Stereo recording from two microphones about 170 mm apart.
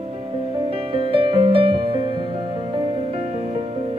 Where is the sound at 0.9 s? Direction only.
30° right (ahead or behind).